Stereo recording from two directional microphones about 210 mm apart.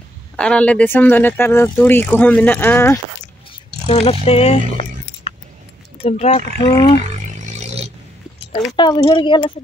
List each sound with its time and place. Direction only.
0.4 s speech: 5° left (ahead or behind)
3.9 s a woman's voice: 30° left (ahead or behind)
7.0 s a sound: 35° right (ahead or behind)
8.5 s a woman's voice: 20° left (ahead or behind)